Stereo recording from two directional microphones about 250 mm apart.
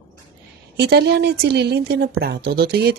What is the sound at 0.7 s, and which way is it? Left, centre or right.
Speech, right.